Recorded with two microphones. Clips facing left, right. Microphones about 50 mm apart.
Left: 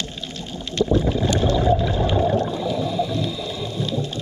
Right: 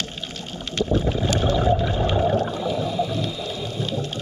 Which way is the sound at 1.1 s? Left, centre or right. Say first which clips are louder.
Left 2 dB; centre.